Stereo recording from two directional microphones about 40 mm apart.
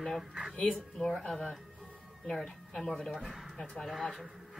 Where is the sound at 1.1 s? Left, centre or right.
Centre.